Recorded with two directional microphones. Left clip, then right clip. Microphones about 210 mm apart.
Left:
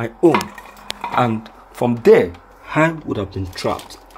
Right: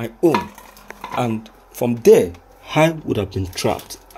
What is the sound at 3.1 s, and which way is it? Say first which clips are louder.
Speech: right 2 dB; 35° right (ahead or behind).